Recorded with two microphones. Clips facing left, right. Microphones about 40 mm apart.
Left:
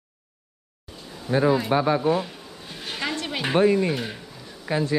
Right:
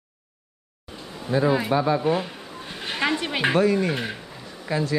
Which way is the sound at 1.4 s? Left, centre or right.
Centre.